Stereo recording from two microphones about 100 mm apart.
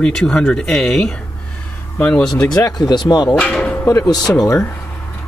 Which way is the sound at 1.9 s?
15° left (ahead or behind).